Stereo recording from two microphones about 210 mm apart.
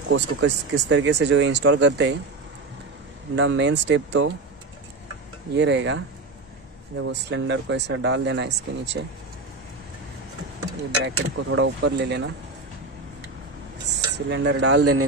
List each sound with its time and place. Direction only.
0.1 s speech: 55° right (ahead or behind)
3.3 s speech: 60° right (ahead or behind)
5.5 s speech: 55° right (ahead or behind)
11.1 s speech: 60° right (ahead or behind)
14.1 s speech: 55° right (ahead or behind); by 15.0 s 90° right